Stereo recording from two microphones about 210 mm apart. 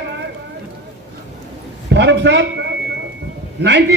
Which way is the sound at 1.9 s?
55° right (ahead or behind).